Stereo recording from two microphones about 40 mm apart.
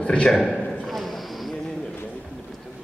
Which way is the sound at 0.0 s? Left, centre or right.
Left.